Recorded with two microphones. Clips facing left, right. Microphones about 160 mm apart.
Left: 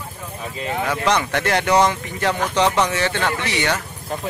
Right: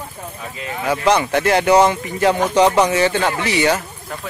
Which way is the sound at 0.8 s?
10° right (ahead or behind).